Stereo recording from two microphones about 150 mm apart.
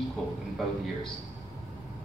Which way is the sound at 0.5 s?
Centre (ahead or behind).